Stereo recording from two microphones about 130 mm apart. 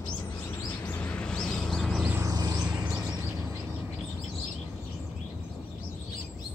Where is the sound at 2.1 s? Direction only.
25° right (ahead or behind).